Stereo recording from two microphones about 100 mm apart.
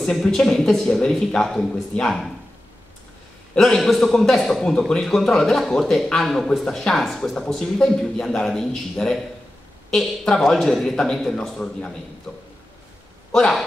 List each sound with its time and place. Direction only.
0.0 s a man's voice: 5° left (ahead or behind)
3.5 s a man's voice: 5° left (ahead or behind)
13.3 s a man's voice: 5° left (ahead or behind)